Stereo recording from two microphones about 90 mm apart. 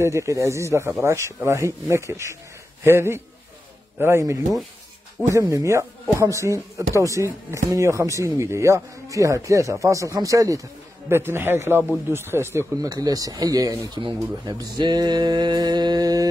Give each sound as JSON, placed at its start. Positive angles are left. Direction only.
{"t": 0.0, "sound": "a man's voice", "side_deg": -35}
{"t": 11.1, "sound": "a man's voice", "side_deg": -25}
{"t": 12.8, "sound": "mantra", "side_deg": -45}